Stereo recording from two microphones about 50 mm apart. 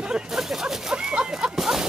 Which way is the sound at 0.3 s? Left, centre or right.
Centre.